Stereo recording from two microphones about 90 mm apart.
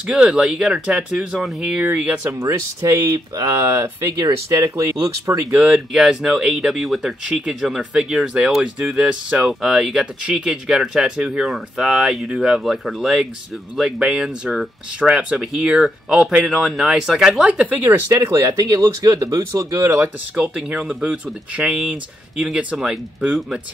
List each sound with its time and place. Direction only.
0.0 s speech: 10° right (ahead or behind)
2.3 s speech: 35° right (ahead or behind)
5.5 s speech: 10° right (ahead or behind)
18.1 s speech: 35° right (ahead or behind)
20.3 s speech: 10° right (ahead or behind)